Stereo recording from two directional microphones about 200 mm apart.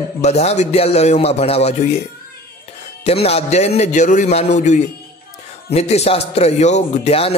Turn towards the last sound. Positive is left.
turn(degrees=30)  # may be behind; listen again after turning